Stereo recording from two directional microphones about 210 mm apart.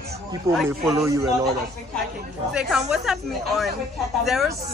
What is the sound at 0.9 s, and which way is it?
Speech, 15° right (ahead or behind).